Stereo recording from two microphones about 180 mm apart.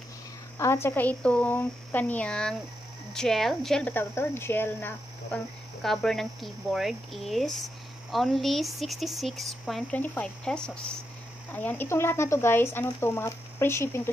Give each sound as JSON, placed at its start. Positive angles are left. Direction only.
{"t": 0.6, "sound": "speech", "side_deg": 15}